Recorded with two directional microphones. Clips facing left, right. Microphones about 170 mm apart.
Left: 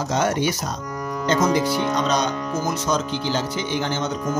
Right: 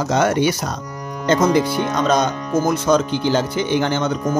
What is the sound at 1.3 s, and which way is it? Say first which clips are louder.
Speech: right 4 dB; 55° right (ahead or behind).